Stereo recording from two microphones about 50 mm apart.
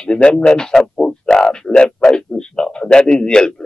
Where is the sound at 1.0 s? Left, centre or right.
Centre.